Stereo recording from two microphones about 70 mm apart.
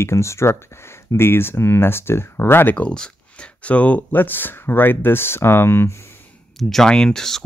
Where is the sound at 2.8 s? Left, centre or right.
Centre; by 5.9 s left.